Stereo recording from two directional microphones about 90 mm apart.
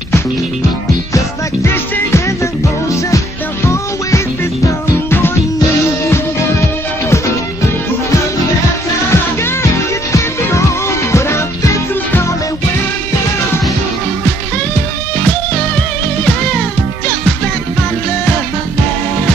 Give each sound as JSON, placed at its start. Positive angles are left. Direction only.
{"t": 9.1, "sound": "music", "side_deg": 30}
{"t": 16.3, "sound": "music", "side_deg": 20}